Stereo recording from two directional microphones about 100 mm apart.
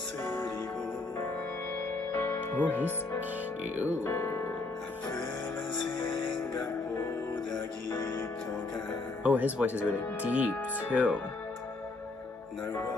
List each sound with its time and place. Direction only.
0.2 s music: 25° left (ahead or behind)
2.1 s music: 20° left (ahead or behind)
3.7 s speech: 15° right (ahead or behind)
4.0 s speech: 25° left (ahead or behind)
9.2 s speech: 15° right (ahead or behind)